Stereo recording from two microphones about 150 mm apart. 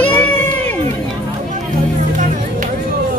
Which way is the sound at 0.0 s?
10° left (ahead or behind).